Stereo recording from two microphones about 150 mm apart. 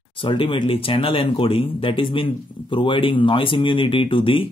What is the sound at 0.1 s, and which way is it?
Speech, 35° left (ahead or behind).